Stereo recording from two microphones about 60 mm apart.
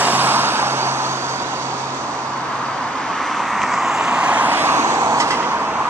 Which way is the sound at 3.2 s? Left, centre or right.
Centre.